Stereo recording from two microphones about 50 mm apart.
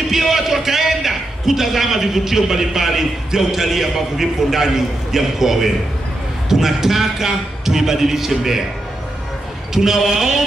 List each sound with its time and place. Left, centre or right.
0.1 s a man's voice: centre
9.8 s a man's voice: centre